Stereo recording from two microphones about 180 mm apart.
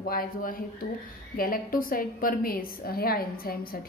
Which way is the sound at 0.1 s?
50° left (ahead or behind).